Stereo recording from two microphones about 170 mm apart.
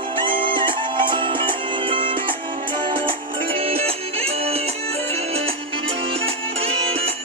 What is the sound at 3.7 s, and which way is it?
Music, 35° right (ahead or behind).